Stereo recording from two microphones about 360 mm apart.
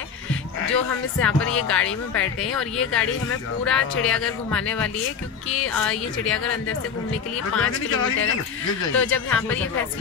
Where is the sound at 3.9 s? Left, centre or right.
Left.